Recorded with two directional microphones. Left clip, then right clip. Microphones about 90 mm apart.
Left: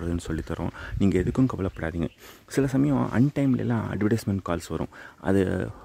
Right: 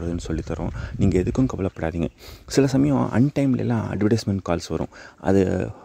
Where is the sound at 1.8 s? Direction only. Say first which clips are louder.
Right 4 dB; 40° right (ahead or behind).